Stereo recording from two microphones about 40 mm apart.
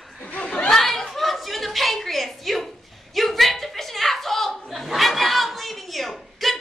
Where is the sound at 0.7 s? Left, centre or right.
Centre.